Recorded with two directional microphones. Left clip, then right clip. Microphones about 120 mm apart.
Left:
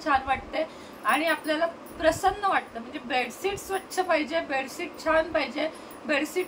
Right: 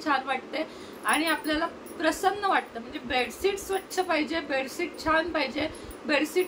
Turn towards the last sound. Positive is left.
turn(degrees=-5)  # may be behind; listen again after turning